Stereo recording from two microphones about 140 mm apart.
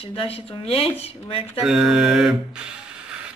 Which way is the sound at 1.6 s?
5° right (ahead or behind).